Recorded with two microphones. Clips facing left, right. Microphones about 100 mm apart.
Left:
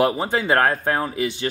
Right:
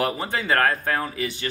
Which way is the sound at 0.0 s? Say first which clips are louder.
Left 5 dB; 20° left (ahead or behind).